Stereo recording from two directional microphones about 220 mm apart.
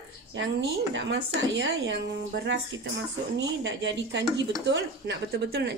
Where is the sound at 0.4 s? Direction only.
55° right (ahead or behind).